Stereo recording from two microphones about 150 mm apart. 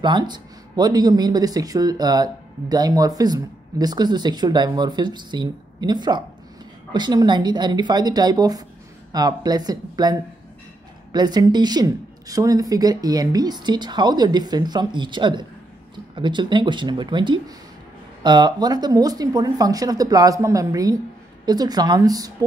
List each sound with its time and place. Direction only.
0.0 s speech: 30° right (ahead or behind)